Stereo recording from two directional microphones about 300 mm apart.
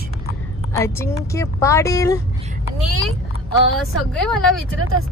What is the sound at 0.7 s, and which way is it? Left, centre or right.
A woman's voice, centre.